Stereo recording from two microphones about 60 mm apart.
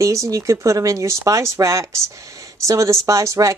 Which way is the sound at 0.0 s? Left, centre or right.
Right.